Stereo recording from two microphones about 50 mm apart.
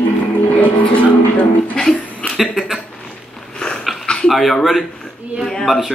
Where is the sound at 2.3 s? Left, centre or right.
Centre.